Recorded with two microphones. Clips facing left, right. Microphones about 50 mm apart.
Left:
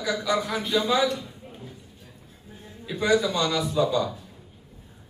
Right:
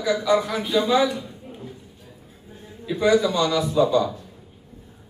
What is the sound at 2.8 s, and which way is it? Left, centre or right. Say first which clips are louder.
A man's voice: right 4 dB; centre.